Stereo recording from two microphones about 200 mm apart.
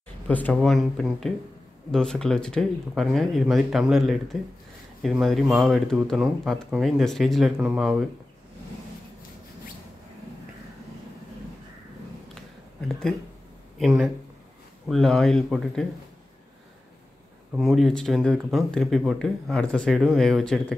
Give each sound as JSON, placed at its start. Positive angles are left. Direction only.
{"t": 0.3, "sound": "speech", "side_deg": 5}
{"t": 13.7, "sound": "speech", "side_deg": 0}
{"t": 17.6, "sound": "speech", "side_deg": 0}